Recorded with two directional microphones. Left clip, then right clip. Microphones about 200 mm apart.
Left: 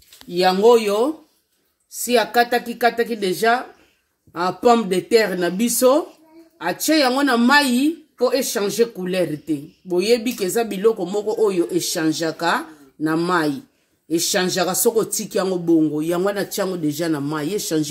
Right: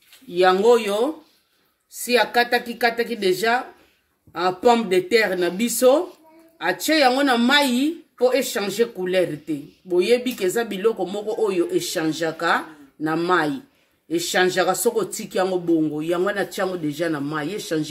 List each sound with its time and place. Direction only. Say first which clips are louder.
0.3 s speech: left 2 dB; 55° left (ahead or behind)